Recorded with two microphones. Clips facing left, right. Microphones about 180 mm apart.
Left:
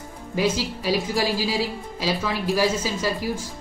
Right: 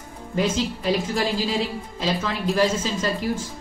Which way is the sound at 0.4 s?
5° left (ahead or behind).